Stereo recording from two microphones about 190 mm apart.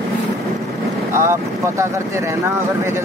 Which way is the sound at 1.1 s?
15° right (ahead or behind).